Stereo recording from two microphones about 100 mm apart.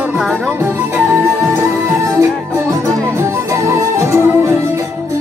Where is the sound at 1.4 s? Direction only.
30° right (ahead or behind).